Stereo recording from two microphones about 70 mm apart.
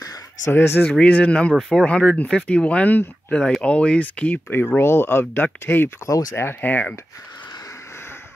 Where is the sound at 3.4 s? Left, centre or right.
Centre.